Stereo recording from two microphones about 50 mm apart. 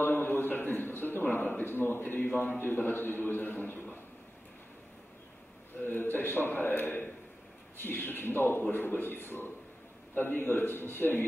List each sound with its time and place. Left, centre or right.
0.0 s a sound: left
2.6 s a man's voice: left
5.9 s a man's voice: left